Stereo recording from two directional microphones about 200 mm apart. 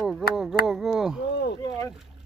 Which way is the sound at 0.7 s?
Centre (ahead or behind).